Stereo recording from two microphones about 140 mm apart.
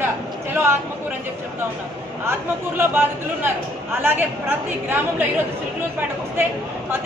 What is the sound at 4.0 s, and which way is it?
Speech, 15° right (ahead or behind).